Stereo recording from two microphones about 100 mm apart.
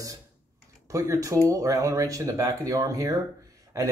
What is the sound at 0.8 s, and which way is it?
Speech, 35° right (ahead or behind).